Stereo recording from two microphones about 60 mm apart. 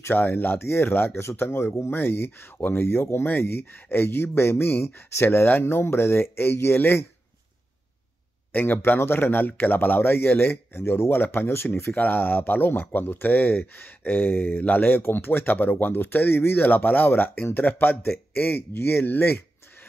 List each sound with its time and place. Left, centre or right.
0.1 s speech: left
8.5 s speech: left